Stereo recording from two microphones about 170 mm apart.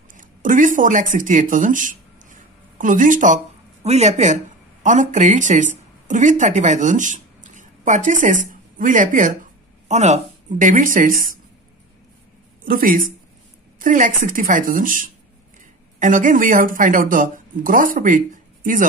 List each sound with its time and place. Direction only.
0.1 s speech: 50° right (ahead or behind)
12.6 s speech: 55° right (ahead or behind)